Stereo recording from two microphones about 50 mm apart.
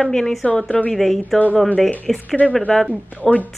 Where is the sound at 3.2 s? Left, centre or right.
Left.